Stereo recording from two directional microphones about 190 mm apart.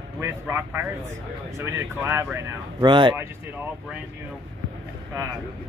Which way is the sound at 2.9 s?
25° right (ahead or behind).